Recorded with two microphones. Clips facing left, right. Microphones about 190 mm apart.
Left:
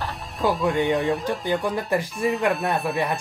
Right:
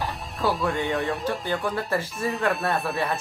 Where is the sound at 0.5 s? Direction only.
Centre (ahead or behind).